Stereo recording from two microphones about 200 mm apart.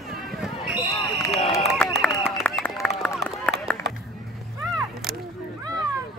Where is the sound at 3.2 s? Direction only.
5° left (ahead or behind).